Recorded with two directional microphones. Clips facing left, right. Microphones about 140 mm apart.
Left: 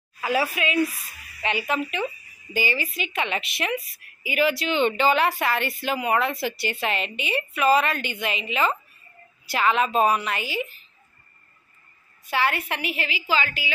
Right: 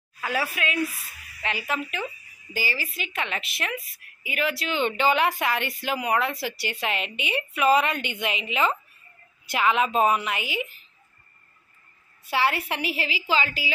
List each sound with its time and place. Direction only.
0.2 s a woman's voice: 10° left (ahead or behind); by 10.7 s 15° right (ahead or behind)
12.3 s a woman's voice: 25° right (ahead or behind)